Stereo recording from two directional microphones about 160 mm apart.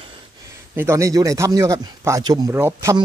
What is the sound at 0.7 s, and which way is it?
Speech, 20° right (ahead or behind).